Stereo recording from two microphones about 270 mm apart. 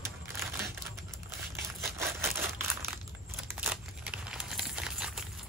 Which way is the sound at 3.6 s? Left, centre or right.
Centre.